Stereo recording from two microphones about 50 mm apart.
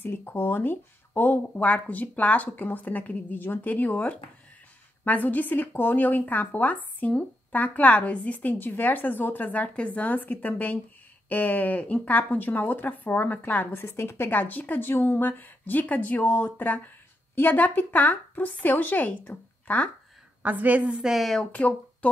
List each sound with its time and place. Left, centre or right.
0.0 s speech: left
13.7 s a woman's voice: left
14.4 s speech: left
20.4 s a woman's voice: right
20.9 s speech: centre
21.5 s speech: left